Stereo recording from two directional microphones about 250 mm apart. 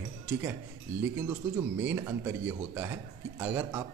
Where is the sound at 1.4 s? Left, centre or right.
Centre.